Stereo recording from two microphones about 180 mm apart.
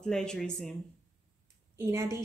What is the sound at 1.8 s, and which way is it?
Speech, 15° right (ahead or behind).